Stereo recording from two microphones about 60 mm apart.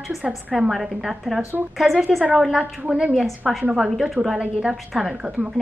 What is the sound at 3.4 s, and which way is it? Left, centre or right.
A woman's voice, centre.